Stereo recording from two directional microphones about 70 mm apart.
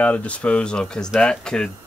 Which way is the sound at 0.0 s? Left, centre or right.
Left.